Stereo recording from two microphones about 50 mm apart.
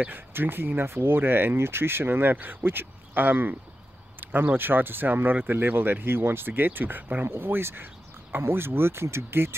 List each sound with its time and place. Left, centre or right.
0.3 s speech: right
7.2 s speech: right